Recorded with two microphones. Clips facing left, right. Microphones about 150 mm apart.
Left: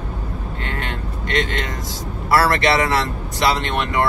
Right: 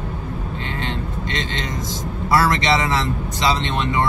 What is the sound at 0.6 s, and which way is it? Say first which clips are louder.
Speech: even; 20° right (ahead or behind).